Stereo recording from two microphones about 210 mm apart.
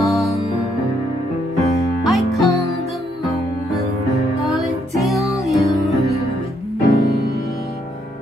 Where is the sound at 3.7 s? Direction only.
Centre (ahead or behind).